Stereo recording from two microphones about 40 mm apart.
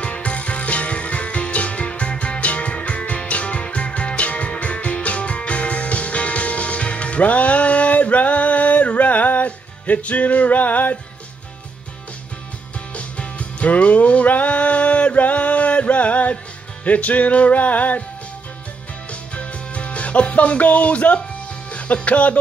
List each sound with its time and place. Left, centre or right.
0.0 s music: left
12.9 s music: left
19.0 s music: left
21.6 s speech: left